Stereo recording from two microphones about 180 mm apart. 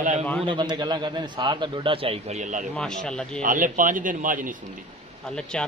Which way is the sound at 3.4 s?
45° right (ahead or behind).